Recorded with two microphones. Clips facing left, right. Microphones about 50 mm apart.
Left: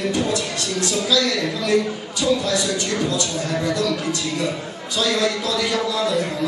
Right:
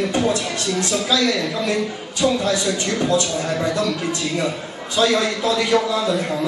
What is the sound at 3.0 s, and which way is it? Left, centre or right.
Speech, right.